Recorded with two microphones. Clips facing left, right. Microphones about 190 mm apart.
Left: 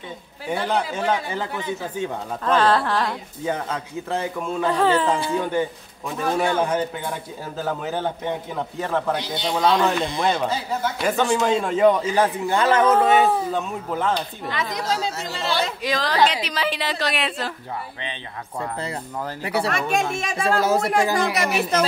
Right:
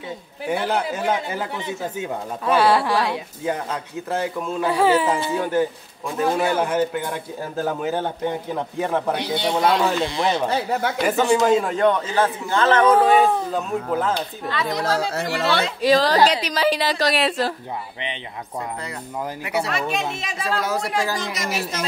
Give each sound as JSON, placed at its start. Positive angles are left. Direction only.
{"t": 0.5, "sound": "speech", "side_deg": -5}
{"t": 9.2, "sound": "speech", "side_deg": -60}
{"t": 9.6, "sound": "speech", "side_deg": -5}
{"t": 10.5, "sound": "speech", "side_deg": -65}
{"t": 11.1, "sound": "a man's voice", "side_deg": -5}
{"t": 15.1, "sound": "speech", "side_deg": -65}
{"t": 15.8, "sound": "a woman's voice", "side_deg": -35}
{"t": 19.4, "sound": "speech", "side_deg": 35}
{"t": 19.7, "sound": "speech", "side_deg": 50}
{"t": 20.6, "sound": "speech", "side_deg": 25}
{"t": 20.9, "sound": "speech", "side_deg": 55}